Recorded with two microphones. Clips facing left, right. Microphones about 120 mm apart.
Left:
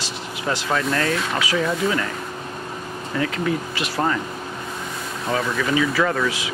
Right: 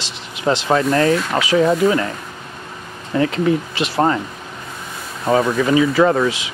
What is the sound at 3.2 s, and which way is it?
Speech, 30° right (ahead or behind).